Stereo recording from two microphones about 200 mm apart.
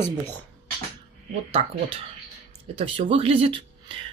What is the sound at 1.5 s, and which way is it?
Speech, 30° right (ahead or behind).